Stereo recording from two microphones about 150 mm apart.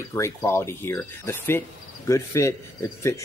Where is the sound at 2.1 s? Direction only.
20° left (ahead or behind).